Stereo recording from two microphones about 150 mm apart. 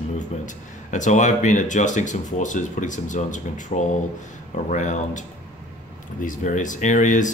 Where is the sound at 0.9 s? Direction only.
55° left (ahead or behind).